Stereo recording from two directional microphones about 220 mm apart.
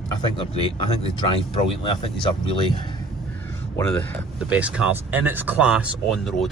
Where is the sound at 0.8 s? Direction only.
25° left (ahead or behind).